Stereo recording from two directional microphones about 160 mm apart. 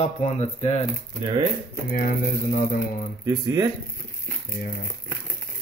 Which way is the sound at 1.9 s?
60° left (ahead or behind).